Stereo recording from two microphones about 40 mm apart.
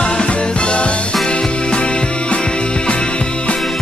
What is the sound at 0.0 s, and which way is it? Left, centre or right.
Music, left.